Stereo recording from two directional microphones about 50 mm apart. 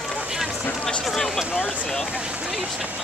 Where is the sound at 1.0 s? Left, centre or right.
Centre.